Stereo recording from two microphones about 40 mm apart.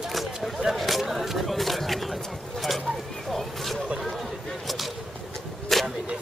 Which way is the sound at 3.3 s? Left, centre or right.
Centre.